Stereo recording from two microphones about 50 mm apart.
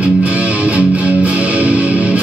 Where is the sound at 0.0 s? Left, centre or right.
Right.